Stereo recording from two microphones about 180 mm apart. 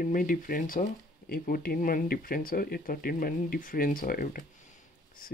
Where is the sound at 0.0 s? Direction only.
50° left (ahead or behind).